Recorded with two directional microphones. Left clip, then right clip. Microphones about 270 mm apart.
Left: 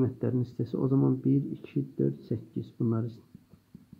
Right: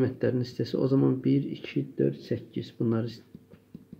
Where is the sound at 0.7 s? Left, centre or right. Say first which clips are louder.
Right 3 dB; centre.